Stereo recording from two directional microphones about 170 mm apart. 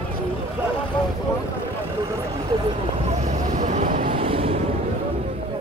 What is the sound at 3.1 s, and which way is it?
Vehicle, 40° right (ahead or behind).